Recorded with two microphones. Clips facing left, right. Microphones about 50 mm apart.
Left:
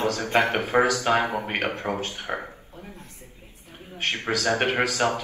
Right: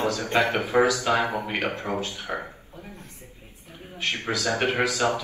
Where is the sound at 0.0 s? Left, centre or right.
Left.